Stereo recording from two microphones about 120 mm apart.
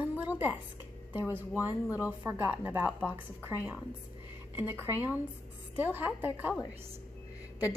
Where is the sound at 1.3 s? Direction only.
15° right (ahead or behind).